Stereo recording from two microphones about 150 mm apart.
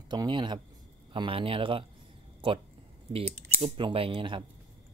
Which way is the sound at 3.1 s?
40° right (ahead or behind).